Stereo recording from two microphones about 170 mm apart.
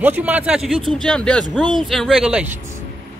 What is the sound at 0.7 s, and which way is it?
Speech, 30° right (ahead or behind).